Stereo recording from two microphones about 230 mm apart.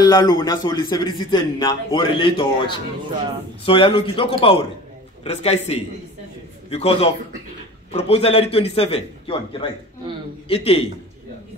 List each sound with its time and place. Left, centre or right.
0.0 s a man's voice: centre